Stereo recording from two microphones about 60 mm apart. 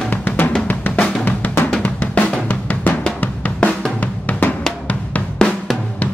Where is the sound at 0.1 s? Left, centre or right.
Left.